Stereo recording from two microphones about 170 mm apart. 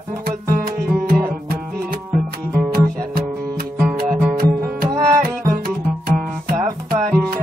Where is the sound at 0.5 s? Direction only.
60° right (ahead or behind).